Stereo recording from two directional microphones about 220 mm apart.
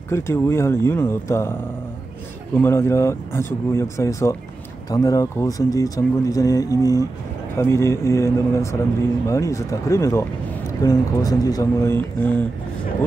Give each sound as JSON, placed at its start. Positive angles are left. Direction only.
{"t": 0.1, "sound": "speech", "side_deg": 10}
{"t": 2.5, "sound": "speech", "side_deg": 10}